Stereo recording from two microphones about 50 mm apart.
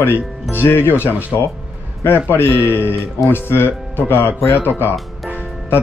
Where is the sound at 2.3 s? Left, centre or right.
Left.